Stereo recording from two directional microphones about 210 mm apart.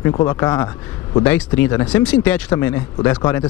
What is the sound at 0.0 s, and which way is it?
Speech, 15° left (ahead or behind).